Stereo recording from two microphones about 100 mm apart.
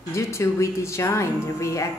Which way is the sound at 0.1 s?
30° left (ahead or behind).